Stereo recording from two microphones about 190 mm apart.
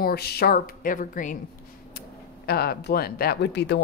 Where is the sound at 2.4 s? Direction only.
55° left (ahead or behind).